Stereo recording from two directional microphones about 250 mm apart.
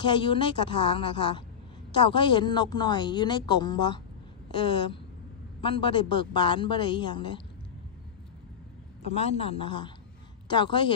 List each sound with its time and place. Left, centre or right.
0.0 s a woman's voice: centre
9.0 s a woman's voice: left